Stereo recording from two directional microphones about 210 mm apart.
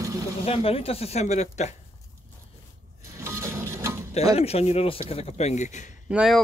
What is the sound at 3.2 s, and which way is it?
Printer, 15° right (ahead or behind).